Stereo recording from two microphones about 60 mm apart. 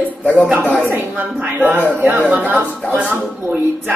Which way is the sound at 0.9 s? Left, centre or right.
Right.